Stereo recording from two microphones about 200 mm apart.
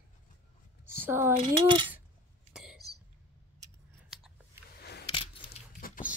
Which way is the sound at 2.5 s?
Centre (ahead or behind).